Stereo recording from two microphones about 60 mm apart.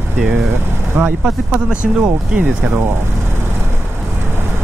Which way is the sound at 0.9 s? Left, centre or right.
Right.